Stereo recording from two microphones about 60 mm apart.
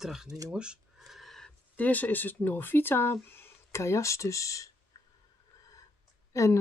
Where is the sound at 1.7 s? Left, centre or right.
Left.